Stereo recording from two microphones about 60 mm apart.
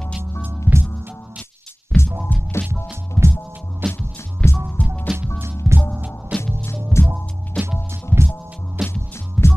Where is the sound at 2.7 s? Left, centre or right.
Right.